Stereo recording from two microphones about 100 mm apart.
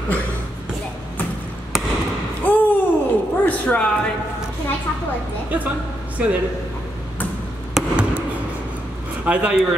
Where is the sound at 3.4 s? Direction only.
10° left (ahead or behind).